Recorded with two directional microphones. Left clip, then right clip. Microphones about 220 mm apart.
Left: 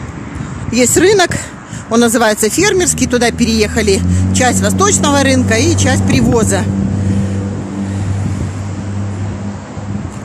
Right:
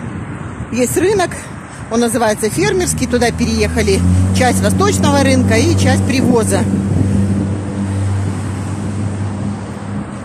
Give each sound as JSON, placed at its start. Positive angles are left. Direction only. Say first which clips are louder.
{"t": 0.7, "sound": "speech", "louder": "left 4 dB", "side_deg": 25}